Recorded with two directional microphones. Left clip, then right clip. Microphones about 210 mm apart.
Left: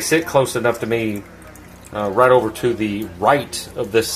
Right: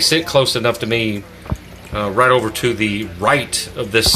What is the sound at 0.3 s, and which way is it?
Speech, centre (ahead or behind).